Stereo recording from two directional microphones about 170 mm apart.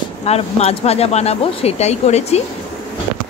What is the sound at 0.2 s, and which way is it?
A woman's voice, 40° left (ahead or behind).